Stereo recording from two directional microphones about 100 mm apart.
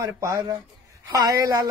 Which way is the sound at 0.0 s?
30° right (ahead or behind).